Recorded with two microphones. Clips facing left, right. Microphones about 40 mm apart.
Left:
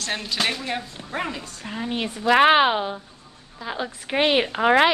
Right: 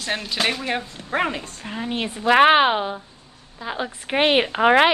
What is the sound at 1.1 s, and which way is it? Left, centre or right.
Speech, right.